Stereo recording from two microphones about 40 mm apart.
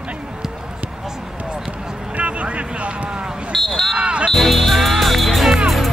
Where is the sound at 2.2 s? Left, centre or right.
Right.